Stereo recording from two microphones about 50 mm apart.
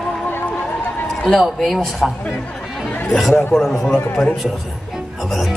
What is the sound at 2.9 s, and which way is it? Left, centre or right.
Chatter, left.